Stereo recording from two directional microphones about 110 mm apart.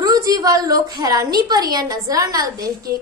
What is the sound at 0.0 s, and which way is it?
A woman's voice, 35° right (ahead or behind).